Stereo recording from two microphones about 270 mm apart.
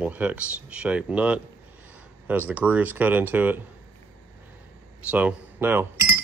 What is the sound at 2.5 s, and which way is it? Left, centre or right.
Speech, centre.